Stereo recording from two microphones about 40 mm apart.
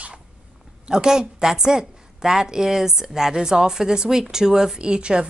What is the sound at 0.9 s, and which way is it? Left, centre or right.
A woman's voice, centre.